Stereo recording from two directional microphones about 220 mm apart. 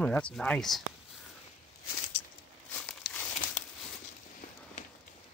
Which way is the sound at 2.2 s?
90° left.